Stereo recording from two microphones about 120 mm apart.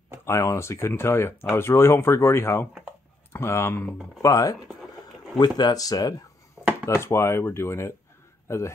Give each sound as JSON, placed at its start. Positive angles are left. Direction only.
{"t": 0.2, "sound": "speech", "side_deg": 25}
{"t": 6.6, "sound": "a sound", "side_deg": 20}
{"t": 6.9, "sound": "a man's voice", "side_deg": 20}